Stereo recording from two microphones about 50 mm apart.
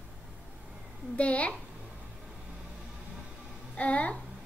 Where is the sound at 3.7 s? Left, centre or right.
Left.